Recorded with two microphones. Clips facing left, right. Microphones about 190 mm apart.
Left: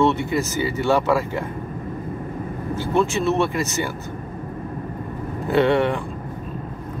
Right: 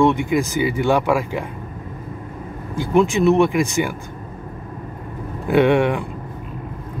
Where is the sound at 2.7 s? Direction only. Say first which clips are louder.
Right 4 dB; 15° right (ahead or behind).